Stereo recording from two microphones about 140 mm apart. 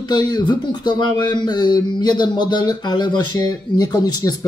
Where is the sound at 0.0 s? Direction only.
30° left (ahead or behind).